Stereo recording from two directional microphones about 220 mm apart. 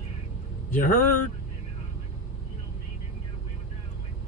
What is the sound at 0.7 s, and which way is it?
Speech, 40° left (ahead or behind).